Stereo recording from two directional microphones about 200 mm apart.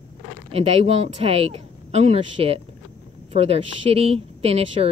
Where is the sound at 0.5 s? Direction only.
30° right (ahead or behind).